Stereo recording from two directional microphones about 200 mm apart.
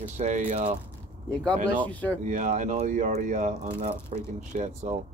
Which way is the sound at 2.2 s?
40° right (ahead or behind).